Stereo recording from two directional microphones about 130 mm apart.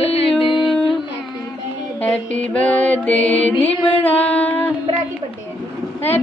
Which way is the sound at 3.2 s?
50° left (ahead or behind).